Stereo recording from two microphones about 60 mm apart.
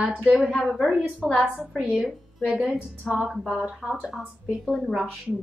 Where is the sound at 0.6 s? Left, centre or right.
Centre.